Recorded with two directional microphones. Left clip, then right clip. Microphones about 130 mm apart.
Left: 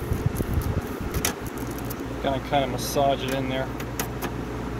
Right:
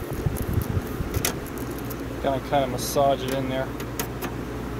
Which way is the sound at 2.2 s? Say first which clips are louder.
Right 1 dB; 20° right (ahead or behind).